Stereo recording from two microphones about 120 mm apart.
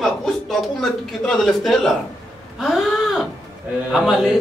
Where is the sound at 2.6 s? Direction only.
Centre (ahead or behind).